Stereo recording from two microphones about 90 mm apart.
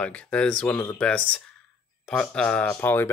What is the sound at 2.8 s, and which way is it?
Speech, 25° left (ahead or behind).